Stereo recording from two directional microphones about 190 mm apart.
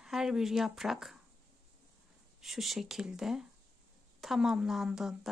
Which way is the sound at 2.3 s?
Centre (ahead or behind).